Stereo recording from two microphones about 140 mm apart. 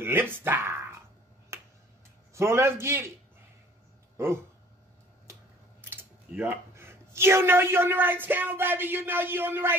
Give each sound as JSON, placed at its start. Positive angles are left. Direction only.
{"t": 0.0, "sound": "speech", "side_deg": -15}
{"t": 1.5, "sound": "finger snapping", "side_deg": -20}
{"t": 2.3, "sound": "a man's voice", "side_deg": -20}
{"t": 5.8, "sound": "speech", "side_deg": -15}